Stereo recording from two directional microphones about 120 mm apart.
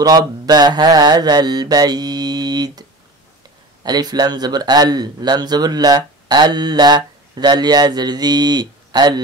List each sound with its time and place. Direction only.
0.0 s mantra: 35° right (ahead or behind)
3.8 s speech: 35° right (ahead or behind)